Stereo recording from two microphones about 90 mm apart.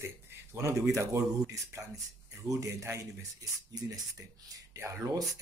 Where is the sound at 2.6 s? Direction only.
35° right (ahead or behind).